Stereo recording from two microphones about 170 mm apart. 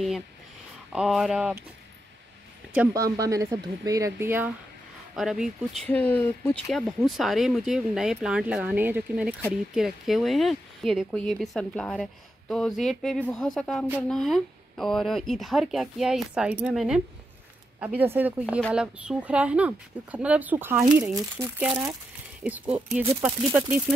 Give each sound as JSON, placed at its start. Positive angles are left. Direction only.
{"t": 0.9, "sound": "speech", "side_deg": -5}
{"t": 2.9, "sound": "speech", "side_deg": -20}
{"t": 5.1, "sound": "speech", "side_deg": -5}
{"t": 5.9, "sound": "speech", "side_deg": 10}
{"t": 6.7, "sound": "speech", "side_deg": 0}
{"t": 22.4, "sound": "speech", "side_deg": -10}